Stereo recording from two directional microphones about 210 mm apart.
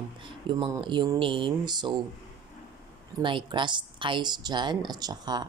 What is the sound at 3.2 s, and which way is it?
Speech, 25° right (ahead or behind).